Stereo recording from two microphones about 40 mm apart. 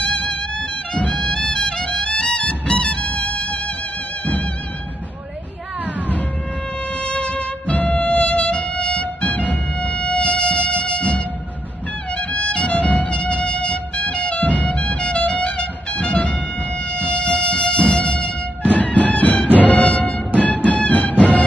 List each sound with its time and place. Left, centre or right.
0.0 s music: left
1.3 s music: centre
7.0 s music: left
18.7 s music: left